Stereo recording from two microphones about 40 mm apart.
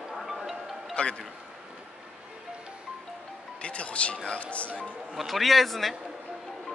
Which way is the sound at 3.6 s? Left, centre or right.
Left.